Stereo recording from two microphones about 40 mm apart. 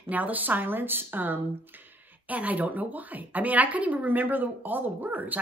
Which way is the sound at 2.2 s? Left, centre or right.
Right.